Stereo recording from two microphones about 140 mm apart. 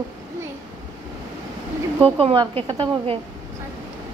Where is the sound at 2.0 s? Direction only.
40° right (ahead or behind).